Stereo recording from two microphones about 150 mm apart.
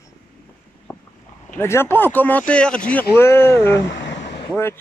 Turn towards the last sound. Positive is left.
turn(degrees=15)  # may be behind; listen again after turning